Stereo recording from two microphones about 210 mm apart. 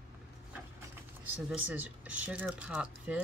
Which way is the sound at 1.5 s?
5° right (ahead or behind).